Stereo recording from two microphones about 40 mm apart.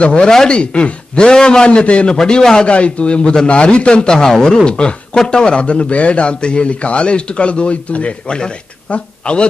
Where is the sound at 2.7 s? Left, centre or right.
Left.